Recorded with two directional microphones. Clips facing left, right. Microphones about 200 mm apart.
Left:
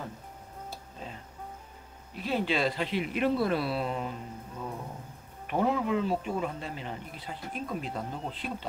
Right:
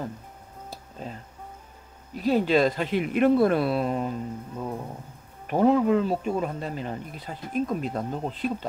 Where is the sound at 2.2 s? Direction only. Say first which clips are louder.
Right 8 dB; 40° right (ahead or behind).